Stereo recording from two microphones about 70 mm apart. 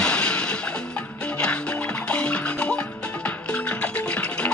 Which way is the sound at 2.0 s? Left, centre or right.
Centre.